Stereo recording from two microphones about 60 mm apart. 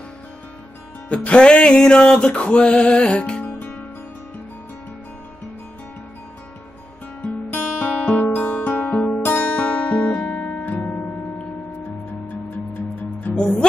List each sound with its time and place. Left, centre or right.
1.0 s music: left
3.4 s music: left
7.5 s music: left
13.4 s music: centre